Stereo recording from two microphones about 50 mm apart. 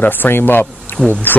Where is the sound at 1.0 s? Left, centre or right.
Left.